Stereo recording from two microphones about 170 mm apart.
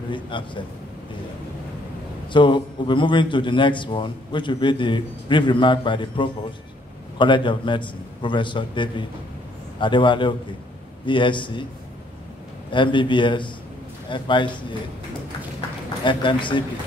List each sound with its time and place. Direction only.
0.1 s a man's voice: 30° left (ahead or behind)
2.3 s a man's voice: 30° left (ahead or behind)
12.7 s a man's voice: 30° left (ahead or behind)
16.0 s a man's voice: 30° left (ahead or behind)